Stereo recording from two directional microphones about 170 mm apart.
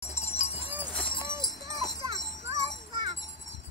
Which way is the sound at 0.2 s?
40° left (ahead or behind).